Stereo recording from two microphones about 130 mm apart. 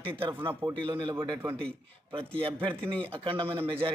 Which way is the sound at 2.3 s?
40° right (ahead or behind).